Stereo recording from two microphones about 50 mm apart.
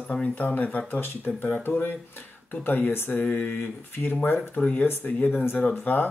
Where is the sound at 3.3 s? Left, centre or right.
Left.